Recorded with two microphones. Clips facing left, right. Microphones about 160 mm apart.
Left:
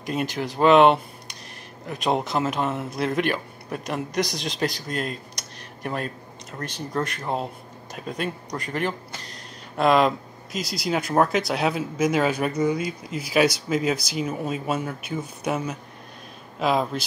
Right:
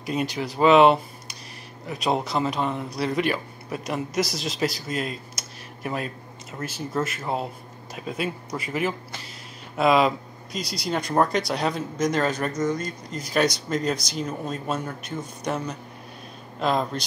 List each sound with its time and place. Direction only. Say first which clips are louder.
0.0 s speech: even; centre (ahead or behind)